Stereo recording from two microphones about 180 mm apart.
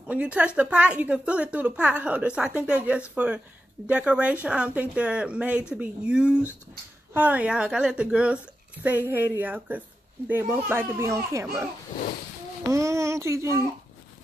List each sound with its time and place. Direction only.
0.0 s a woman's voice: 5° right (ahead or behind)
12.6 s speech: 15° right (ahead or behind)